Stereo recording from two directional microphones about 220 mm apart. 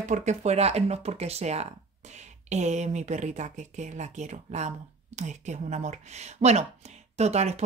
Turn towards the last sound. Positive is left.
turn(degrees=-30)  # may be behind; listen again after turning